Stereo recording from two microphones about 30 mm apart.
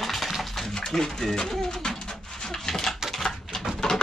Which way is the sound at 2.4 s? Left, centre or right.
Centre.